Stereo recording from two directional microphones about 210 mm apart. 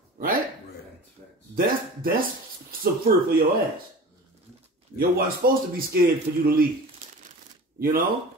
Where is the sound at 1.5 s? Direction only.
45° right (ahead or behind).